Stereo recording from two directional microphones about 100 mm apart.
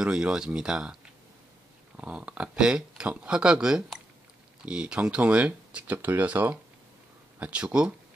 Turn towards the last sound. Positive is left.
turn(degrees=-10)  # may be behind; listen again after turning